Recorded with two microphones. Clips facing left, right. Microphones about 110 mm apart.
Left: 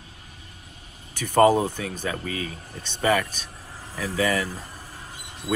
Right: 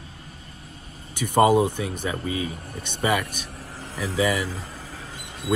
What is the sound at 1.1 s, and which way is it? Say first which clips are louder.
Speech: even; 15° right (ahead or behind).